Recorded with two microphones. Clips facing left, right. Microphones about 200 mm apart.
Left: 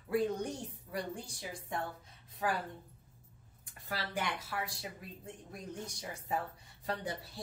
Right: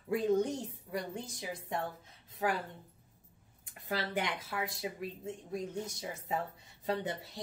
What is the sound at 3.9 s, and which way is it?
Speech, 25° right (ahead or behind).